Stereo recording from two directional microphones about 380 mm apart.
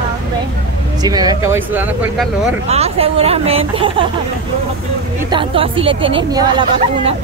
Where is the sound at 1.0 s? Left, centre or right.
Centre.